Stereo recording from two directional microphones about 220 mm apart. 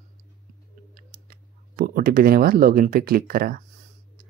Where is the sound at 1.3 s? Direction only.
40° right (ahead or behind).